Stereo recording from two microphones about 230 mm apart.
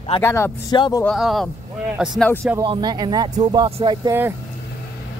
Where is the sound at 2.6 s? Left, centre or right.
Centre.